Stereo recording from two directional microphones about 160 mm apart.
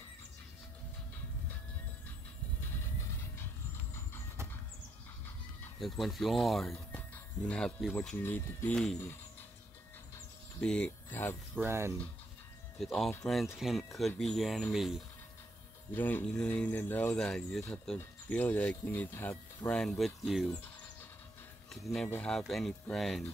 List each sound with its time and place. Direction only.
5.8 s speech: centre (ahead or behind)
8.2 s speech: 10° left (ahead or behind)
10.6 s speech: 5° left (ahead or behind)
11.6 s speech: 15° right (ahead or behind)
12.7 s speech: centre (ahead or behind)
15.9 s speech: 10° left (ahead or behind)
21.6 s speech: centre (ahead or behind)